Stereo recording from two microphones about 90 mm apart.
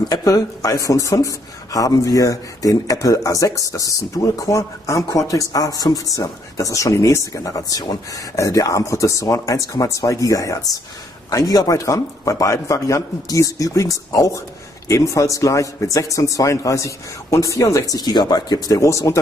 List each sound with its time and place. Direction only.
0.1 s speech: 40° left (ahead or behind)
17.9 s speech: 50° left (ahead or behind); by 19.1 s 35° left (ahead or behind)